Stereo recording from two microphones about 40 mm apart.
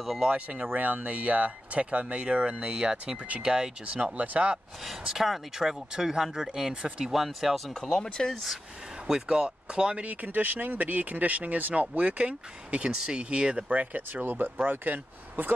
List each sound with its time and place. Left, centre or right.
0.0 s speech: centre
0.3 s speech: right
3.8 s speech: right
4.8 s speech: centre; by 7.1 s right
7.1 s speech: centre
7.7 s speech: centre
9.0 s speech: centre
10.0 s speech: right
12.9 s speech: right
13.7 s speech: right